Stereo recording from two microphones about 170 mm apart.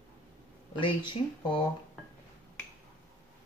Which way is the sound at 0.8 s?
30° left (ahead or behind).